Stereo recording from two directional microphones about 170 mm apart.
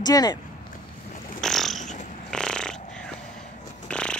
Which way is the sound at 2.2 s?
5° left (ahead or behind).